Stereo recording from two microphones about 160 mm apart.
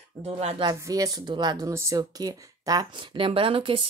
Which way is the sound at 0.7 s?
25° right (ahead or behind).